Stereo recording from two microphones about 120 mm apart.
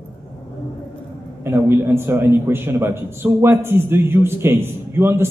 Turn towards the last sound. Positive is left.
turn(degrees=-20)  # may be behind; listen again after turning